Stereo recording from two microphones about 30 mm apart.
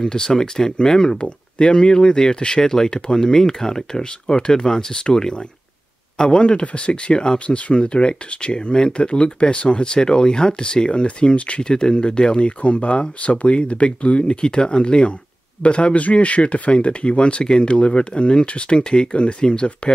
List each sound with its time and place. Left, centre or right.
0.0 s speech: left
1.1 s speech: left
10.9 s speech: left
11.6 s speech: left